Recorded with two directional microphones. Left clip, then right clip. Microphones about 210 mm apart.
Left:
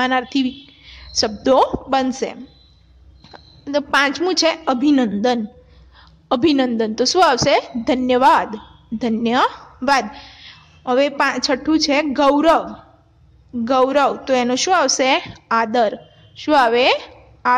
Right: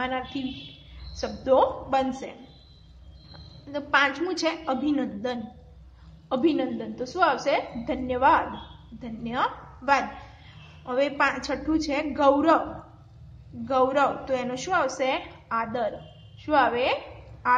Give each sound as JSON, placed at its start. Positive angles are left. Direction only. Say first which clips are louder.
{"t": 0.0, "sound": "a woman's voice", "louder": "left 11 dB", "side_deg": 50}
{"t": 3.3, "sound": "a woman's voice", "louder": "left 13 dB", "side_deg": 45}
{"t": 13.7, "sound": "a woman's voice", "louder": "left 7 dB", "side_deg": 45}